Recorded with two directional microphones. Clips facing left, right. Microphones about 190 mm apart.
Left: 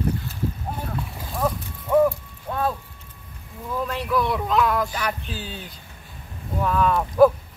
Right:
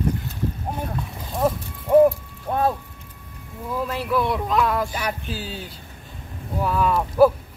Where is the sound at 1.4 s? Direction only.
35° right (ahead or behind).